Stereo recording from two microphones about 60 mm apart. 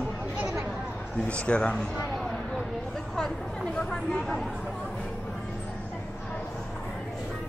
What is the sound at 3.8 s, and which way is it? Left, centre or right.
Speech, centre.